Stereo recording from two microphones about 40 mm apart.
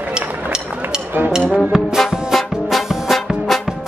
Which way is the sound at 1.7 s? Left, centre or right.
Centre.